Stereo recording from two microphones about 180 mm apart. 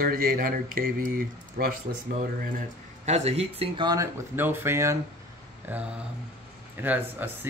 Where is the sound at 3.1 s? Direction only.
35° right (ahead or behind).